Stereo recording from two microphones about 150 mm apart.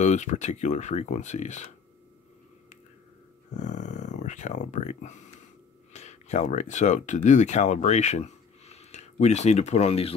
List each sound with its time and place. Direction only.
0.0 s speech: 55° left (ahead or behind)
3.5 s speech: 55° left (ahead or behind)